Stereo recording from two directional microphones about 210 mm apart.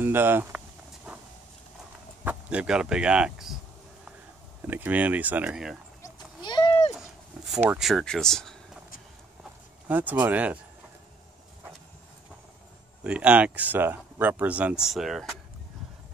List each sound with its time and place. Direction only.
0.0 s speech: 10° right (ahead or behind)
2.2 s speech: 5° right (ahead or behind)
4.6 s speech: 10° right (ahead or behind)
6.0 s a sound: 20° left (ahead or behind)
7.4 s speech: 5° right (ahead or behind)
9.8 s speech: 10° right (ahead or behind)
13.0 s speech: 5° right (ahead or behind)